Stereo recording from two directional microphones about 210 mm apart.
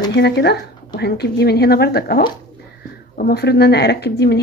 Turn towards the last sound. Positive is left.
turn(degrees=50)  # may be behind; listen again after turning